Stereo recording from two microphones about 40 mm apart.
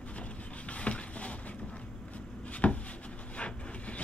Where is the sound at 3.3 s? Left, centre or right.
Left.